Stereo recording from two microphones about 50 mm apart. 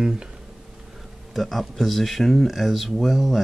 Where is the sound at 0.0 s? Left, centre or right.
Centre.